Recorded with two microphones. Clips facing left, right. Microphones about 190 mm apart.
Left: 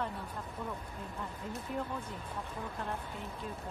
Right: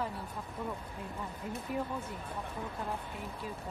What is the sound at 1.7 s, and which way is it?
Speech, 5° right (ahead or behind).